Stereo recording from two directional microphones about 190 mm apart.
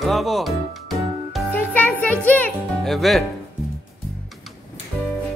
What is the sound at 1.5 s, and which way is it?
Music, 10° left (ahead or behind).